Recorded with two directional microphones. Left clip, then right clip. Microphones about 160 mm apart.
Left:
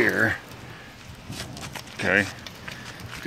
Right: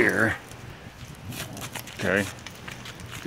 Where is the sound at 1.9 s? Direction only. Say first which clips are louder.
Left 3 dB; 35° right (ahead or behind).